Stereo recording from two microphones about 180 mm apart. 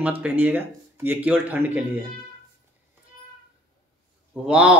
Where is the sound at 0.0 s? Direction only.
10° right (ahead or behind).